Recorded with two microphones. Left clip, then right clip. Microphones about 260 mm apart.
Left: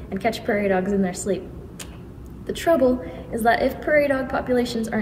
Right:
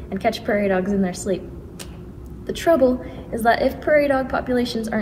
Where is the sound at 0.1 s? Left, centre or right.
Centre.